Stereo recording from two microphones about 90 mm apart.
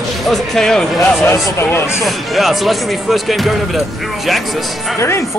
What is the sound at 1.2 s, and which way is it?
Speech, 25° left (ahead or behind).